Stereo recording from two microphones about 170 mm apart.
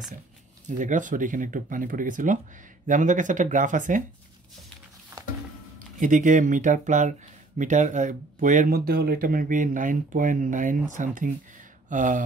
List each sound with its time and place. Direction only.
0.7 s speech: 50° right (ahead or behind)
5.9 s speech: 50° right (ahead or behind)